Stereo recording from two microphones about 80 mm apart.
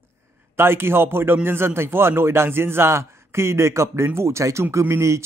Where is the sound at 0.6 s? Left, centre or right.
Right.